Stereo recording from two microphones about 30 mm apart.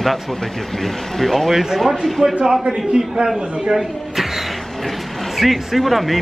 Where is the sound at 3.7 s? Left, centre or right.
Centre.